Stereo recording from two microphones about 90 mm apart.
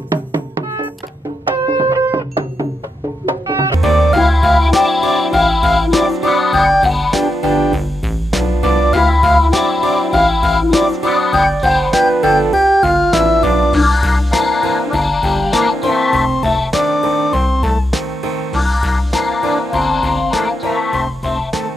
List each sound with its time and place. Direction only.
1.8 s music: 40° right (ahead or behind)
2.0 s music: 65° right (ahead or behind)
3.4 s music: 40° right (ahead or behind)
3.8 s music: centre (ahead or behind)